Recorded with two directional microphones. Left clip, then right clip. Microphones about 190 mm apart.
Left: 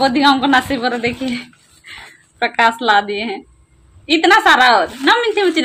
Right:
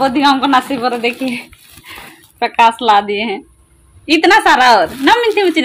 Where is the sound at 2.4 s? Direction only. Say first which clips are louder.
Right 3 dB; 5° right (ahead or behind).